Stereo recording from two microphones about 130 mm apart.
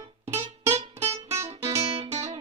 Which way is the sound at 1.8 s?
55° right (ahead or behind).